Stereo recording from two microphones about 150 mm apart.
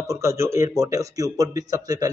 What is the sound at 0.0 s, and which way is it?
Speech, 20° right (ahead or behind).